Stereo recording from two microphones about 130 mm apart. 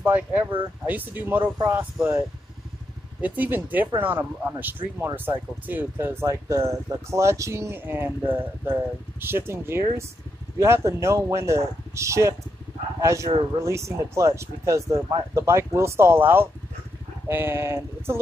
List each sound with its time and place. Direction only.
0.0 s speech: 15° right (ahead or behind)
15.0 s speech: 35° right (ahead or behind)
15.4 s speech: 20° right (ahead or behind)